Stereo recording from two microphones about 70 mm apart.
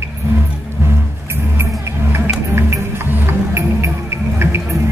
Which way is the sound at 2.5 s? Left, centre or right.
Right.